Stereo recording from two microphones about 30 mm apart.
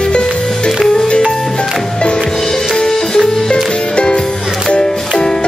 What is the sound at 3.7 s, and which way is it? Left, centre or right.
Music, left.